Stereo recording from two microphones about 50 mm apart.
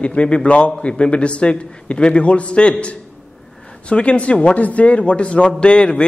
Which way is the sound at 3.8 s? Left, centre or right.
Left.